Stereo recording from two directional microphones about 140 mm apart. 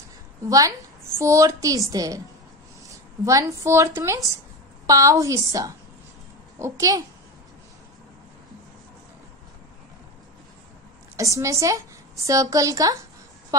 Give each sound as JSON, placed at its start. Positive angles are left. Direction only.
{"t": 0.5, "sound": "a woman's voice", "side_deg": -25}
{"t": 11.1, "sound": "a woman's voice", "side_deg": -20}